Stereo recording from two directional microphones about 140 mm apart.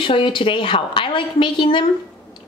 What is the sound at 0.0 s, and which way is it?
Speech, 35° left (ahead or behind).